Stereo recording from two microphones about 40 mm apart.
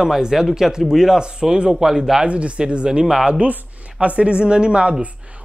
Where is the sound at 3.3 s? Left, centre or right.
Right.